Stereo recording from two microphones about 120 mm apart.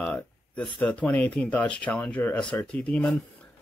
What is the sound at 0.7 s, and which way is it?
Speech, 10° left (ahead or behind).